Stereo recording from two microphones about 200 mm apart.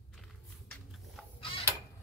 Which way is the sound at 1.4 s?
25° left (ahead or behind).